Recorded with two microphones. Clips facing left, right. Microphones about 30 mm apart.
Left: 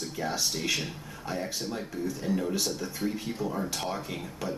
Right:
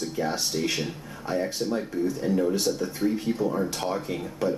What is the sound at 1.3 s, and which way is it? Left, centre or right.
Speech, centre.